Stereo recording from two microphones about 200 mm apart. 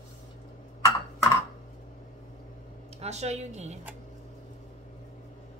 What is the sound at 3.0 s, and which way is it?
Speech, 35° right (ahead or behind).